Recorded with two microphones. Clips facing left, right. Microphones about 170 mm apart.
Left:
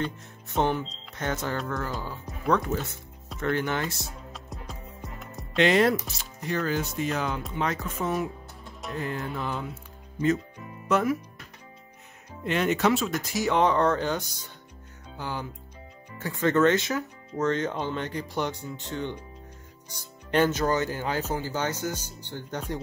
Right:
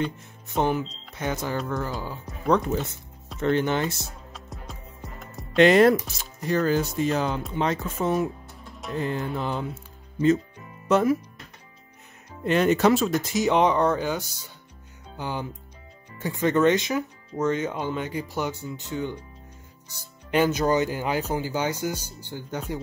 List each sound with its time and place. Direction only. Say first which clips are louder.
0.0 s speech: right 3 dB; 5° right (ahead or behind)
2.5 s music: right 3 dB; 20° right (ahead or behind)
4.3 s music: even; centre (ahead or behind)
5.6 s speech: right 5 dB; 50° right (ahead or behind)
6.4 s speech: right 5 dB; 40° right (ahead or behind)
7.5 s music: right 3 dB; 25° right (ahead or behind)
10.9 s music: right 4 dB; 25° right (ahead or behind)
12.4 s speech: right 4 dB; 40° right (ahead or behind)
13.3 s speech: right 1 dB; 20° right (ahead or behind)
20.2 s speech: right 2 dB; 10° right (ahead or behind)